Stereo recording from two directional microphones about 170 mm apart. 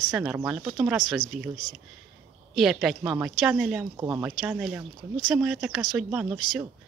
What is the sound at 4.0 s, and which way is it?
Speech, 20° right (ahead or behind).